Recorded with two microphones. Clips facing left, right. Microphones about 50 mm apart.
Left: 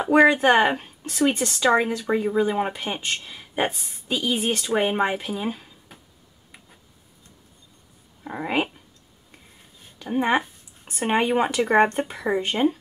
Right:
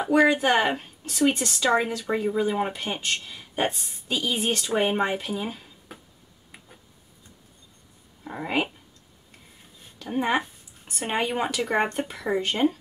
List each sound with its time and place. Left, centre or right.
0.3 s speech: left
0.6 s speech: centre
8.2 s speech: centre
9.9 s speech: centre